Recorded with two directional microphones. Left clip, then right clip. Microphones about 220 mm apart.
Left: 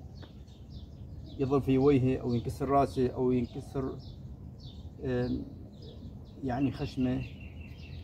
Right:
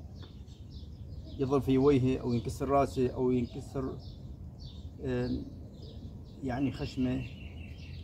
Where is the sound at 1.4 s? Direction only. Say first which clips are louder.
Even; 15° right (ahead or behind).